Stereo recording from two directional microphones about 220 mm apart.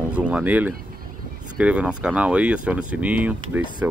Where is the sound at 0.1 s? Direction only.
5° right (ahead or behind).